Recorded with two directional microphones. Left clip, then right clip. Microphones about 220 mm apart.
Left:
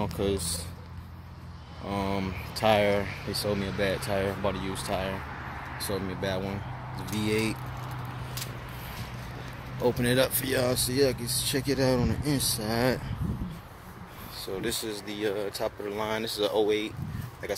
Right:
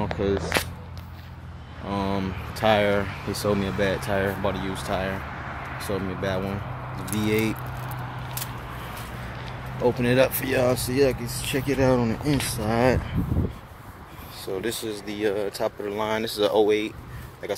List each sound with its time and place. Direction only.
0.0 s speech: 15° left (ahead or behind)
1.9 s speech: centre (ahead or behind)
9.8 s speech: centre (ahead or behind)
14.6 s speech: 5° right (ahead or behind); by 16.9 s 20° right (ahead or behind)